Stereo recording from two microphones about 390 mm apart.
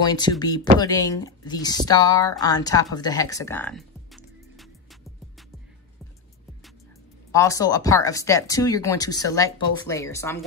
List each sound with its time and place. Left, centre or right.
0.0 s speech: centre
7.3 s speech: centre